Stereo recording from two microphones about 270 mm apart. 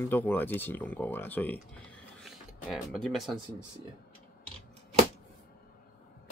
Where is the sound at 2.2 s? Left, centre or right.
Centre.